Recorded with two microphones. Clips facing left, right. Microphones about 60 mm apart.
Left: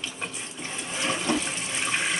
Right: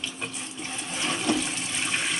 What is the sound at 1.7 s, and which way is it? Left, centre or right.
Toilet flush, centre.